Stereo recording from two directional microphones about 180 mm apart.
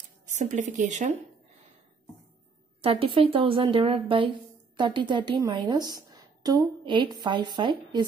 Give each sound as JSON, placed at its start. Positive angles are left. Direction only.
{"t": 0.3, "sound": "speech", "side_deg": -45}
{"t": 2.8, "sound": "a woman's voice", "side_deg": -30}